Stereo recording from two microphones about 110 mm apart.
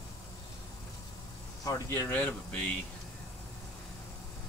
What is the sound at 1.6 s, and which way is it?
Speech, 30° left (ahead or behind).